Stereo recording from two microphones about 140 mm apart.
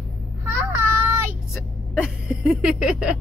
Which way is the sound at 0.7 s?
15° right (ahead or behind).